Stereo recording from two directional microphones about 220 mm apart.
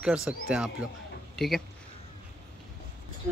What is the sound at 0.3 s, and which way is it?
Speech, 5° right (ahead or behind).